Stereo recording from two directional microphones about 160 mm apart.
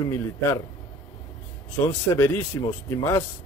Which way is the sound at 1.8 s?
15° left (ahead or behind).